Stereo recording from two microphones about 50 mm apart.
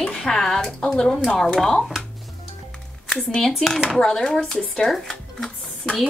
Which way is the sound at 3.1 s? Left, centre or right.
Centre.